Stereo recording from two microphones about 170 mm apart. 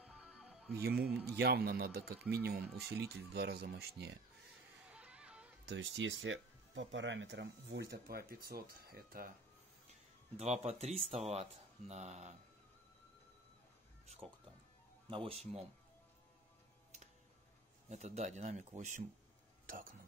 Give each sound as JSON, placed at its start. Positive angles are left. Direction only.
{"t": 0.0, "sound": "music", "side_deg": -5}
{"t": 0.8, "sound": "a man's voice", "side_deg": -65}
{"t": 4.8, "sound": "music", "side_deg": -5}
{"t": 5.7, "sound": "speech", "side_deg": -90}
{"t": 10.3, "sound": "speech", "side_deg": -40}
{"t": 15.0, "sound": "speech", "side_deg": -30}
{"t": 17.8, "sound": "speech", "side_deg": -40}
{"t": 19.6, "sound": "a sound", "side_deg": -55}